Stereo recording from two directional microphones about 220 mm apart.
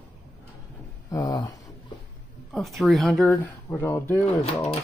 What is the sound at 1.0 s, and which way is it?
Speech, 15° left (ahead or behind).